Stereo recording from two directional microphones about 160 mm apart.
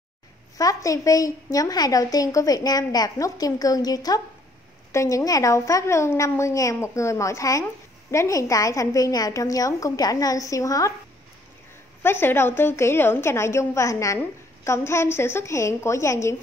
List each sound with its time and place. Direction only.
0.6 s a woman's voice: 20° left (ahead or behind)
12.0 s a woman's voice: 15° left (ahead or behind)